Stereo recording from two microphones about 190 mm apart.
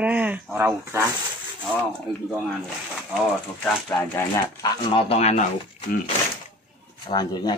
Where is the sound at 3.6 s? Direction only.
10° left (ahead or behind).